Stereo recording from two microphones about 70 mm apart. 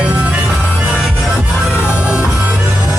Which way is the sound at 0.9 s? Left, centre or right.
Centre.